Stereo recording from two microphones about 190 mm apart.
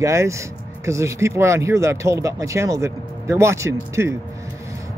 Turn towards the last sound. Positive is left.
turn(degrees=-15)  # may be behind; listen again after turning